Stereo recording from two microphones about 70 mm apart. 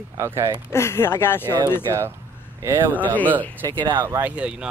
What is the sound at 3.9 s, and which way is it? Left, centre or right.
Speech, right.